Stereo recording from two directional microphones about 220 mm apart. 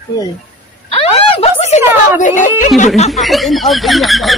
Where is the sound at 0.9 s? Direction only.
25° left (ahead or behind).